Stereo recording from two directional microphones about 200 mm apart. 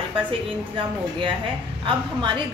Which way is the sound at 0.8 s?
25° right (ahead or behind).